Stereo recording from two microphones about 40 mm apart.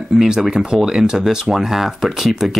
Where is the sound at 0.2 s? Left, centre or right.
Centre.